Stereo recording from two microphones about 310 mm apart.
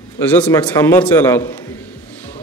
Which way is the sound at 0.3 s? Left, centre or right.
Centre.